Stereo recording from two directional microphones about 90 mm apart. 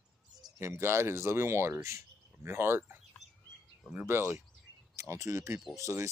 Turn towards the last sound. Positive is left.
turn(degrees=-35)  # may be behind; listen again after turning